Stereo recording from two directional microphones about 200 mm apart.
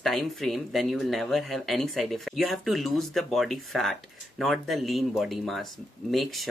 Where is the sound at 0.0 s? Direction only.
Centre (ahead or behind).